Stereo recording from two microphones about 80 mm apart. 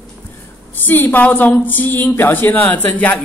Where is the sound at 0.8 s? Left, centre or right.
Left.